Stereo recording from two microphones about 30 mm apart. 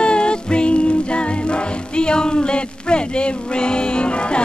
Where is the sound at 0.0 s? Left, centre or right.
Left.